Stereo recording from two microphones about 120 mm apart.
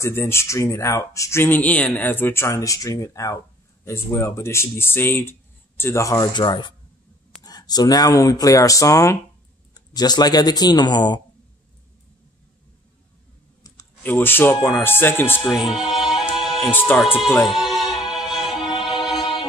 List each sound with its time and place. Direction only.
0.0 s speech: 20° left (ahead or behind)
6.3 s speech: 40° left (ahead or behind)
14.0 s speech: 15° left (ahead or behind)
15.7 s music: 5° right (ahead or behind)
16.7 s speech: 15° left (ahead or behind)
17.6 s music: centre (ahead or behind)